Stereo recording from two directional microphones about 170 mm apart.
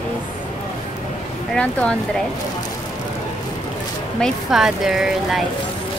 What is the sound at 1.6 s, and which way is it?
Speech, 5° left (ahead or behind).